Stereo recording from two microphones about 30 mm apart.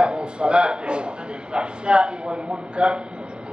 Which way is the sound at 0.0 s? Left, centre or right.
Right.